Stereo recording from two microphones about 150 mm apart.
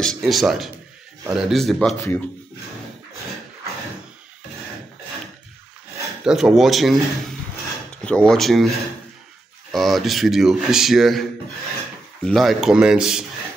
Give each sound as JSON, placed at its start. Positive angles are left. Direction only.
{"t": 0.0, "sound": "speech", "side_deg": 0}
{"t": 2.0, "sound": "speech", "side_deg": 15}
{"t": 6.2, "sound": "speech", "side_deg": -5}
{"t": 12.3, "sound": "speech", "side_deg": 0}